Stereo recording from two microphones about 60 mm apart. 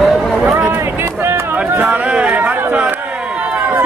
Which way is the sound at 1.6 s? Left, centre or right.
Right.